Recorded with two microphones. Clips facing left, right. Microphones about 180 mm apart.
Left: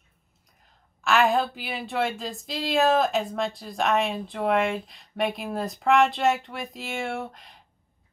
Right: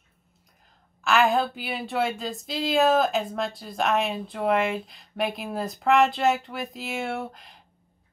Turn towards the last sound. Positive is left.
turn(degrees=0)  # may be behind; listen again after turning